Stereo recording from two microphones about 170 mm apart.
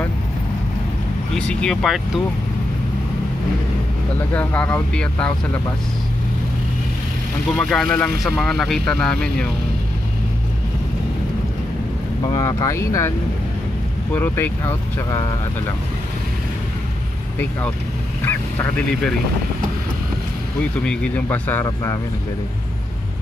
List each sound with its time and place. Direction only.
1.3 s speech: 5° left (ahead or behind)
4.3 s speech: 10° left (ahead or behind)
7.5 s speech: 5° left (ahead or behind)
12.4 s speech: 20° left (ahead or behind)
14.1 s speech: 10° left (ahead or behind)
17.4 s speech: 10° left (ahead or behind)
18.2 s goose: 10° left (ahead or behind)
20.8 s speech: 5° left (ahead or behind)